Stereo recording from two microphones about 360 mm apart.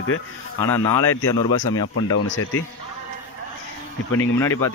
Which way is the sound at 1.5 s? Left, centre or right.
Left.